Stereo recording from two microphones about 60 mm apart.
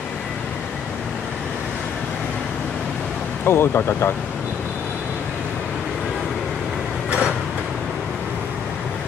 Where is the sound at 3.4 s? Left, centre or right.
Left.